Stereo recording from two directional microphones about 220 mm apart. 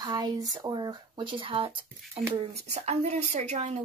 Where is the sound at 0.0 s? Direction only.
20° right (ahead or behind).